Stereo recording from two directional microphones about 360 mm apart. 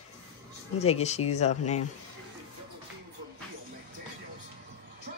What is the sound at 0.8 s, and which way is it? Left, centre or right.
Speech, centre.